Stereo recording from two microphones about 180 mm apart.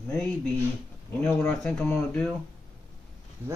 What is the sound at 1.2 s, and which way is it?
Speech, 5° left (ahead or behind).